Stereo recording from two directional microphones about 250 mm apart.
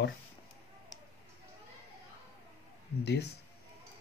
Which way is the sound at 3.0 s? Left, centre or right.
Left.